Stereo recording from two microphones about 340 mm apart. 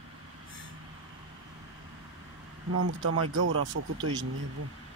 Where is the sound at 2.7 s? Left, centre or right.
Right.